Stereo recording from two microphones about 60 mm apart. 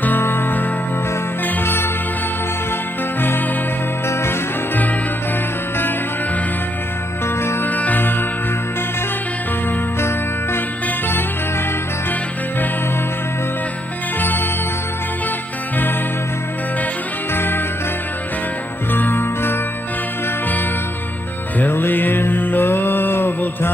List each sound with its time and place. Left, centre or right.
0.0 s music: left
3.2 s music: left
7.6 s music: left
9.9 s music: left
14.2 s music: left
17.3 s music: left
18.9 s music: left
21.5 s music: left